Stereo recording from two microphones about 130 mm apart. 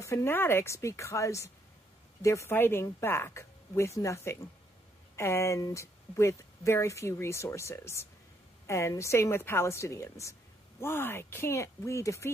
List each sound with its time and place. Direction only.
0.0 s speech: 20° left (ahead or behind)